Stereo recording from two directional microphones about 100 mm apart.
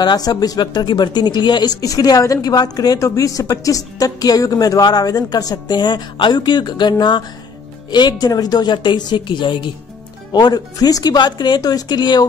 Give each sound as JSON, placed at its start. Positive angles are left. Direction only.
{"t": 0.0, "sound": "speech", "side_deg": 45}